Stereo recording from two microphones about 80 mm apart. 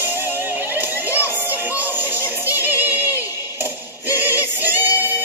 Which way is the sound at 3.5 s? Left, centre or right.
Right.